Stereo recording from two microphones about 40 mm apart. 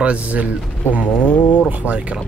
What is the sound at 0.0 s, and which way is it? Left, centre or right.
Speech, right.